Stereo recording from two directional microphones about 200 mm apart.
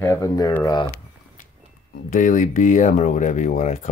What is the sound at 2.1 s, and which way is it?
Speech, 40° left (ahead or behind).